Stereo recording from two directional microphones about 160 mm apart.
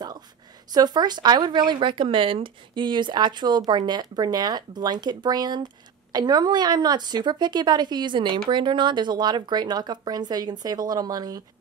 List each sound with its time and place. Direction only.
0.7 s speech: 25° right (ahead or behind)